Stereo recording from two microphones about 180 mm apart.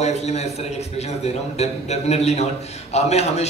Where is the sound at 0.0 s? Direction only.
35° left (ahead or behind).